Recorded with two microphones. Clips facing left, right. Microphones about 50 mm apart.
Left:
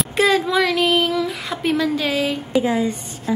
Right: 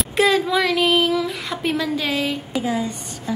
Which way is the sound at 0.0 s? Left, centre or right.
Centre.